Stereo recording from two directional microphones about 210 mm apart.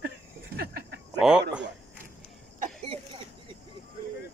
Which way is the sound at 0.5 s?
45° right (ahead or behind).